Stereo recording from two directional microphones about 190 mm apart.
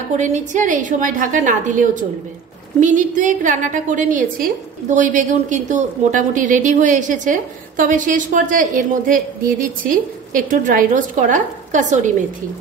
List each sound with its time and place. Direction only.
0.2 s a woman's voice: 40° right (ahead or behind)